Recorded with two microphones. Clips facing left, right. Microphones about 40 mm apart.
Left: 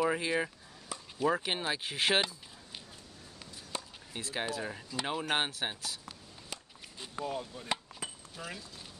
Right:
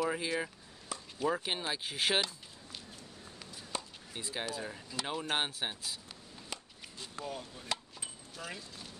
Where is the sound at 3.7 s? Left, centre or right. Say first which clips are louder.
Even; centre.